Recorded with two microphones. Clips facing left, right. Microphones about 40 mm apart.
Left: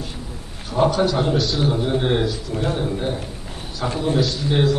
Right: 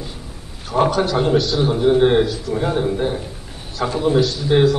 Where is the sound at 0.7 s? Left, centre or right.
Right.